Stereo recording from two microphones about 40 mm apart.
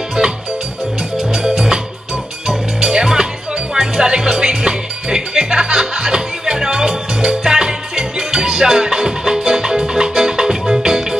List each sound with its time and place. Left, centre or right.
1.1 s music: centre